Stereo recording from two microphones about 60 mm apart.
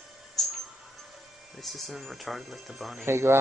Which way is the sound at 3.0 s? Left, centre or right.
Right.